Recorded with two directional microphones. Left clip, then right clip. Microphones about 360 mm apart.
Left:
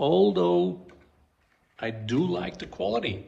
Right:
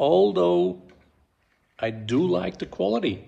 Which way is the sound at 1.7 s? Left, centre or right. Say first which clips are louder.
Right 4 dB; centre.